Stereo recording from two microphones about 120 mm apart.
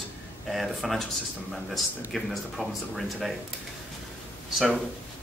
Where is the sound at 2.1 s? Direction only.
Centre (ahead or behind).